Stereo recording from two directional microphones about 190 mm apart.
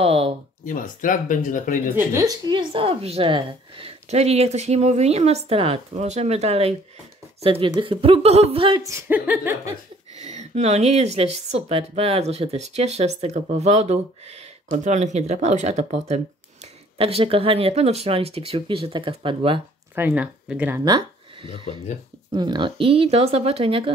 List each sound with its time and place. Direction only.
0.0 s speech: 30° right (ahead or behind)
0.7 s speech: 45° left (ahead or behind)
2.0 s speech: 15° right (ahead or behind)
9.1 s speech: 10° right (ahead or behind)
10.2 s speech: 35° right (ahead or behind)
20.0 s speech: 5° right (ahead or behind)
20.8 s speech: 25° right (ahead or behind)